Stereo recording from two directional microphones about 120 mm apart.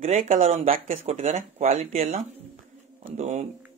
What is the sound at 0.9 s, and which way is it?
Speech, 65° right (ahead or behind).